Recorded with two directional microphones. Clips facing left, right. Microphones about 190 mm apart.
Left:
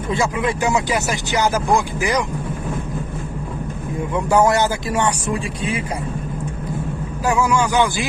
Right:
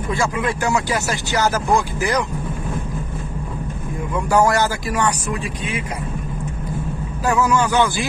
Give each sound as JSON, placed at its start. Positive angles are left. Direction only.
{"t": 0.1, "sound": "speech", "side_deg": 20}
{"t": 4.1, "sound": "speech", "side_deg": 20}
{"t": 7.2, "sound": "speech", "side_deg": 10}